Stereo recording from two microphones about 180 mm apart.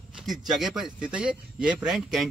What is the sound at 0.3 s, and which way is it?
A man's voice, centre (ahead or behind).